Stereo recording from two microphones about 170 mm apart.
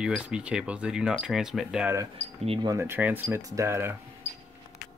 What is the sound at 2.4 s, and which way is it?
Speech, 35° right (ahead or behind).